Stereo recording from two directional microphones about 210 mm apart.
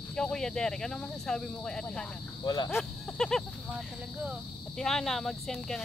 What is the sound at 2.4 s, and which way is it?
Speech, 15° left (ahead or behind).